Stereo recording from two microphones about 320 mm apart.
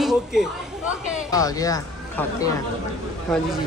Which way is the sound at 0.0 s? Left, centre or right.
Centre.